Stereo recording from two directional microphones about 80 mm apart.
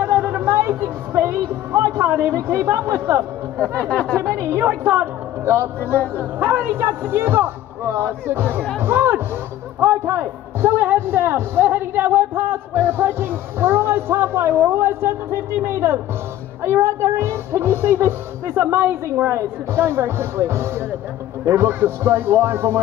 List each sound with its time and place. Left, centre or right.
0.0 s music: right
2.3 s speech: right
3.5 s speech: centre
4.4 s a man's voice: right